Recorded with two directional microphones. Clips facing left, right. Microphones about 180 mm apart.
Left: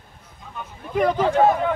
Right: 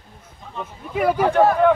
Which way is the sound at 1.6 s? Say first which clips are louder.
Right 8 dB; 60° right (ahead or behind).